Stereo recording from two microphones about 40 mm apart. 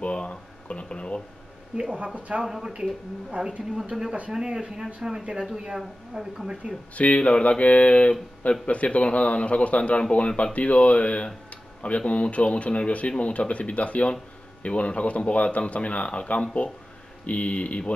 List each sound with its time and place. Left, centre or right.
0.0 s a sound: left
0.7 s speech: left
1.8 s speech: right
2.4 s speech: centre
2.7 s a woman's voice: right
3.9 s speech: centre
4.3 s a woman's voice: right
7.0 s speech: left